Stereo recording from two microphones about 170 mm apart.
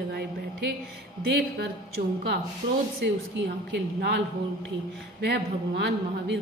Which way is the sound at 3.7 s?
90° right.